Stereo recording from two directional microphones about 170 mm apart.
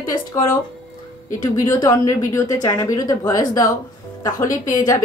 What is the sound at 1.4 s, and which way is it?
Speech, 20° left (ahead or behind).